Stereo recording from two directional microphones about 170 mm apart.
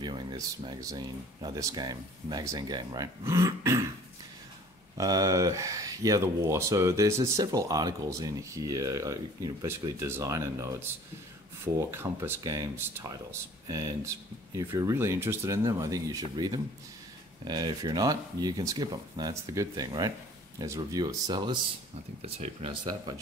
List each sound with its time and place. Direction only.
0.0 s speech: 25° right (ahead or behind)
4.9 s speech: 20° right (ahead or behind)